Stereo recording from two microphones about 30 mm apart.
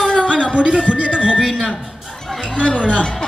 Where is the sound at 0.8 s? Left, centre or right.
Right.